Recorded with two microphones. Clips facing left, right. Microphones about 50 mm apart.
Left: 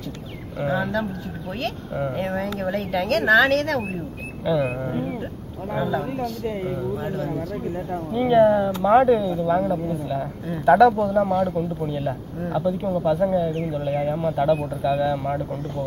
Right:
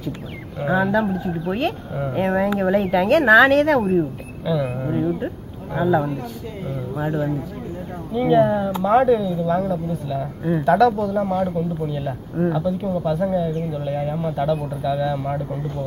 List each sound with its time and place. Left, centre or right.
0.7 s speech: centre
2.1 s speech: centre
4.5 s insect: centre
5.8 s speech: centre
6.4 s speech: left
7.0 s speech: centre
8.1 s speech: centre
9.8 s insect: centre
10.6 s speech: centre